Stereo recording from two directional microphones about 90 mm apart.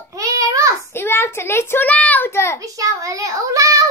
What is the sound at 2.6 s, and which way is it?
Child singing, 40° right (ahead or behind).